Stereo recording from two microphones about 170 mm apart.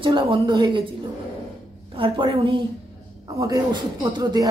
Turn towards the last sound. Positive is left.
turn(degrees=-25)  # may be behind; listen again after turning